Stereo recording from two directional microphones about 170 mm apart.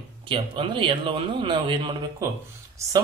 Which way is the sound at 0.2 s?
30° right (ahead or behind).